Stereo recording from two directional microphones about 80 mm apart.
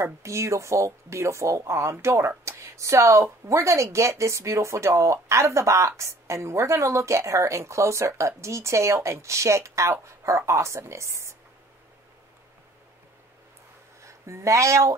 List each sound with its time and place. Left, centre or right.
0.0 s speech: right
14.0 s speech: right